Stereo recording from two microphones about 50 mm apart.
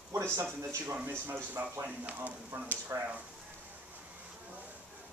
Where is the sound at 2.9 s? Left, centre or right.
Right.